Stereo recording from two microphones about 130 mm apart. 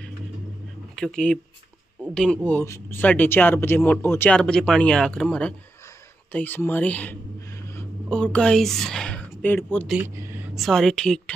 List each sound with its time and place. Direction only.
0.9 s a woman's voice: 5° left (ahead or behind)
10.0 s a sound: 15° right (ahead or behind)
10.5 s a woman's voice: centre (ahead or behind)